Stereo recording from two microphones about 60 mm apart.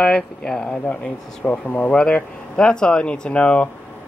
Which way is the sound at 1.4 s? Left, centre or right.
Left.